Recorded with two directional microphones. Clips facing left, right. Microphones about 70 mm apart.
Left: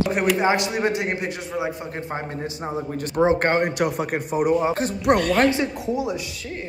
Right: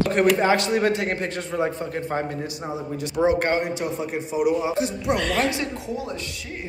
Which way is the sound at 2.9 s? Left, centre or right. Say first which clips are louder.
Left 1 dB; left.